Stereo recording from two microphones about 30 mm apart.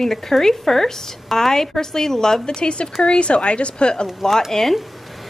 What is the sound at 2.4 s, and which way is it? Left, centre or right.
A woman's voice, left.